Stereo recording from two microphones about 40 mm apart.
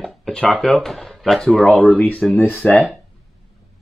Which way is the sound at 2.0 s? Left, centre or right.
Left.